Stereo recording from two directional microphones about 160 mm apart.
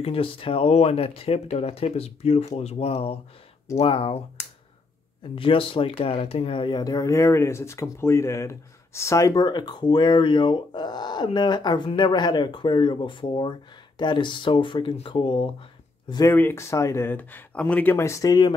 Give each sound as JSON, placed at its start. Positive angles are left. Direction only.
{"t": 0.0, "sound": "speech", "side_deg": 35}
{"t": 5.3, "sound": "speech", "side_deg": 35}